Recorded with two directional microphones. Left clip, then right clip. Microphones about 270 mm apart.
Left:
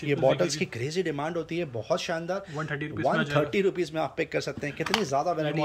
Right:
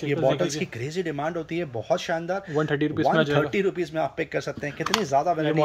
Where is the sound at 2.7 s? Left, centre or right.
Right.